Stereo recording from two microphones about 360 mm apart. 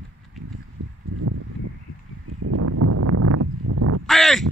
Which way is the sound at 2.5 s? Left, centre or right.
Right.